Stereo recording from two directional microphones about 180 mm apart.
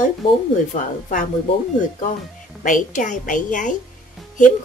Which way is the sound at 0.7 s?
40° left (ahead or behind).